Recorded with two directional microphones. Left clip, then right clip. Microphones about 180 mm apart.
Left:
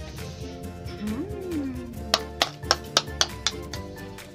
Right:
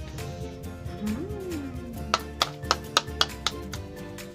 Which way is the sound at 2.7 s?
5° left (ahead or behind).